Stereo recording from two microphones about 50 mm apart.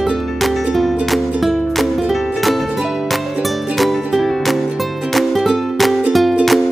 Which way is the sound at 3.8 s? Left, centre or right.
Centre.